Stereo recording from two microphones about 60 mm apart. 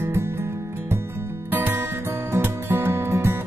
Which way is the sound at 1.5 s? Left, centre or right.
Right.